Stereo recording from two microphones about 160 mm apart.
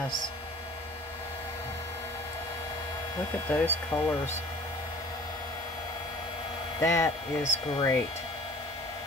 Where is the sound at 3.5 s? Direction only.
10° left (ahead or behind).